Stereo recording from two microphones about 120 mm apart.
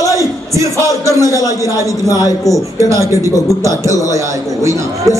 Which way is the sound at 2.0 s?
30° left (ahead or behind).